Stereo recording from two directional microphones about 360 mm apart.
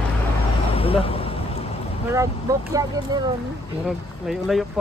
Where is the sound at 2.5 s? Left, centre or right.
Centre.